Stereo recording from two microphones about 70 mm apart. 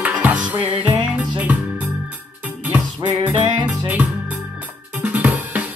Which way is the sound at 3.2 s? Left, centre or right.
Right.